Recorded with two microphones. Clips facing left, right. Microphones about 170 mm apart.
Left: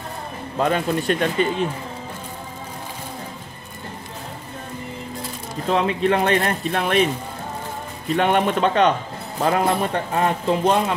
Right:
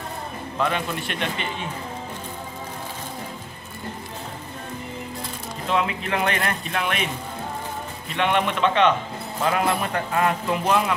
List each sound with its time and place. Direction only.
0.6 s speech: 40° left (ahead or behind)
5.7 s speech: 35° left (ahead or behind)
8.2 s a man's voice: 45° left (ahead or behind)
9.4 s speech: 30° left (ahead or behind)